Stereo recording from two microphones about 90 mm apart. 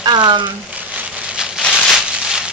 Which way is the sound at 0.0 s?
55° right (ahead or behind).